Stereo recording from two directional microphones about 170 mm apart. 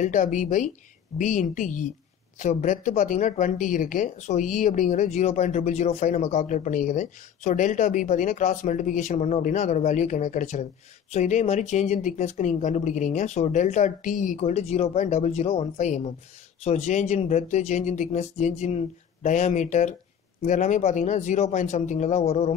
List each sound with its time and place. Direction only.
0.0 s speech: 45° left (ahead or behind)